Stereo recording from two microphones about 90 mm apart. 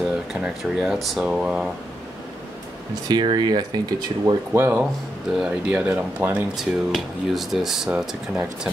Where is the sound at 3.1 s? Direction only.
50° right (ahead or behind).